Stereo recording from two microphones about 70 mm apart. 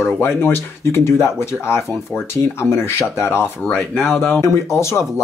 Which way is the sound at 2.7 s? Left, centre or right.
Left.